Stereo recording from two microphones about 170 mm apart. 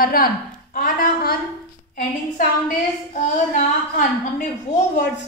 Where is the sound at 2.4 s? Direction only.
50° left (ahead or behind).